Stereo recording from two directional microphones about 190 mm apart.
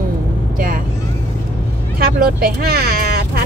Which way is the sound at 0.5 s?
50° right (ahead or behind).